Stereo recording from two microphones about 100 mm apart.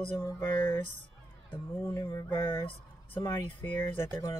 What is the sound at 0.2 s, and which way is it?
Speech, 25° left (ahead or behind).